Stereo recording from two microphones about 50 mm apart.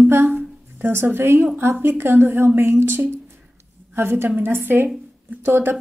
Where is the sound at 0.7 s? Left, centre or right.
Right.